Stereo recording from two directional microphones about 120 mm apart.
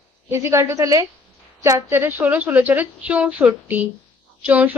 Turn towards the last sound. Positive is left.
turn(degrees=-10)  # may be behind; listen again after turning